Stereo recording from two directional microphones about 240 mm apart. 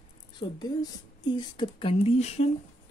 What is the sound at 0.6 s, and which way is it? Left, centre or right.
Speech, centre.